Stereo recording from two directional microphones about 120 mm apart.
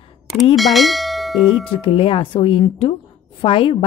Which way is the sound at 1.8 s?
50° left (ahead or behind).